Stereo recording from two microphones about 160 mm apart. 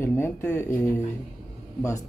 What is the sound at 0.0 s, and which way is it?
Speech, 15° left (ahead or behind).